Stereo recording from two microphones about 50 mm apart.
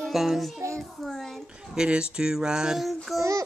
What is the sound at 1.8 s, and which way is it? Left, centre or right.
Speech, centre.